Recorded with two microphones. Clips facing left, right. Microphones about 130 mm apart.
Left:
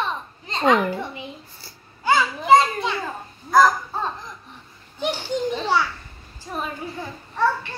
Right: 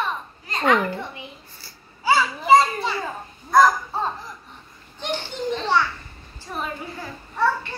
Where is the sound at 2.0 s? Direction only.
5° right (ahead or behind).